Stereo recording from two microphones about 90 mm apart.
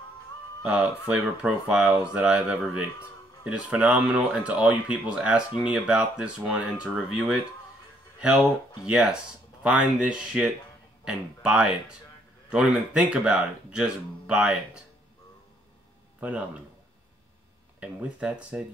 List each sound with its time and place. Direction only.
0.6 s speech: 10° right (ahead or behind)
8.8 s speech: 10° right (ahead or behind)
16.2 s speech: 15° right (ahead or behind)
17.7 s speech: 10° right (ahead or behind)